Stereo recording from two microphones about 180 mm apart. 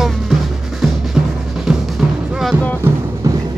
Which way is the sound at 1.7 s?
5° right (ahead or behind).